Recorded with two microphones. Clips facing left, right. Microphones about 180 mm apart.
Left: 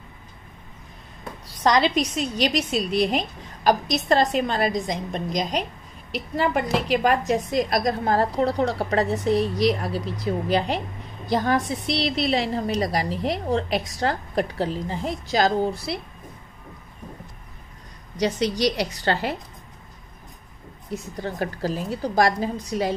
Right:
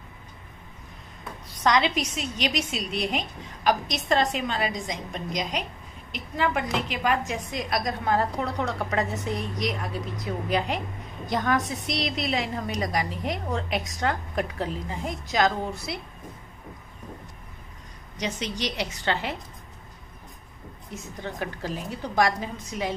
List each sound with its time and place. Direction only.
1.5 s a woman's voice: 35° left (ahead or behind)
18.1 s a woman's voice: 35° left (ahead or behind)
20.9 s a woman's voice: 35° left (ahead or behind)